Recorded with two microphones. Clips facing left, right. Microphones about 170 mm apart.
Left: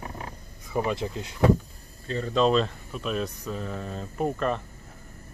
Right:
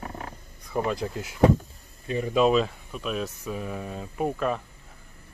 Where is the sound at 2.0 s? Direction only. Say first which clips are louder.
Right 1 dB; 15° right (ahead or behind).